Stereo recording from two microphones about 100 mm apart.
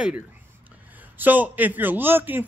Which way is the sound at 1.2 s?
15° right (ahead or behind).